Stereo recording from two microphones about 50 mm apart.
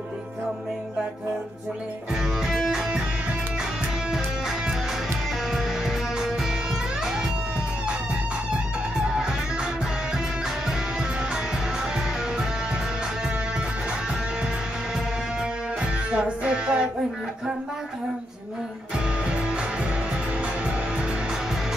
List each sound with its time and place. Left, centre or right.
2.4 s music: centre
4.1 s music: centre
9.0 s music: centre
15.8 s music: right
19.2 s music: right